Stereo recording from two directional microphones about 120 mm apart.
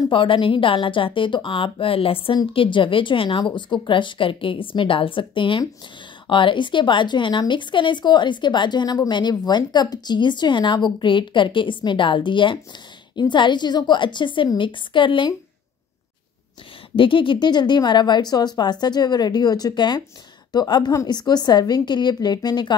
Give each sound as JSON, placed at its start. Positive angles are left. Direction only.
{"t": 0.1, "sound": "a woman's voice", "side_deg": 45}
{"t": 16.9, "sound": "a woman's voice", "side_deg": 45}